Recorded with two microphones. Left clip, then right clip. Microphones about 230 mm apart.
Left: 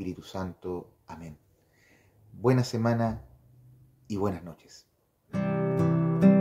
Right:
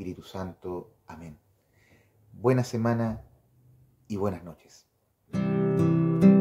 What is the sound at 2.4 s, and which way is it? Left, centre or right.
Speech, centre.